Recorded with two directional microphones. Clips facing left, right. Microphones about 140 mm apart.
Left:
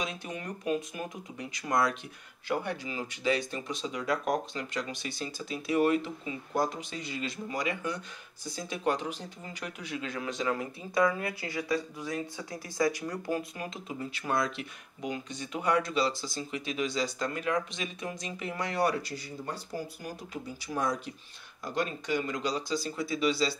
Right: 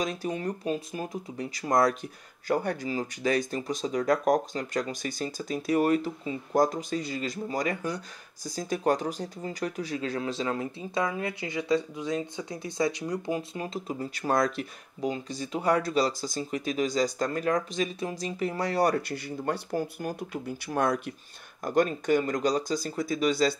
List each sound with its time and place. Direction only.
0.0 s speech: 40° right (ahead or behind); by 13.7 s 25° right (ahead or behind)
13.8 s speech: 40° right (ahead or behind)
19.0 s speech: 60° right (ahead or behind)
21.6 s speech: 50° right (ahead or behind)